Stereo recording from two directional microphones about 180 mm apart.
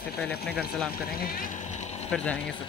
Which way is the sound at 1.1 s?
55° left (ahead or behind).